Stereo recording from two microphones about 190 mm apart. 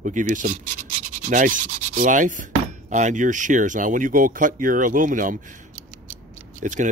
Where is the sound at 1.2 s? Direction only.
40° right (ahead or behind).